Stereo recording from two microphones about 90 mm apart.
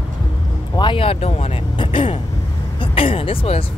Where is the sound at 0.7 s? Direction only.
75° left (ahead or behind).